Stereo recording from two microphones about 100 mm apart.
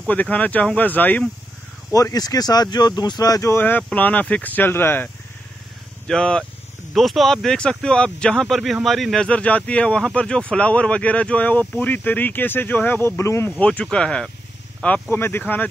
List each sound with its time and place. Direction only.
0.0 s speech: 15° left (ahead or behind)
1.9 s speech: 35° left (ahead or behind)
3.5 s speech: 20° left (ahead or behind)
6.0 s speech: 10° left (ahead or behind); by 13.5 s 25° left (ahead or behind)
13.5 s speech: 10° left (ahead or behind)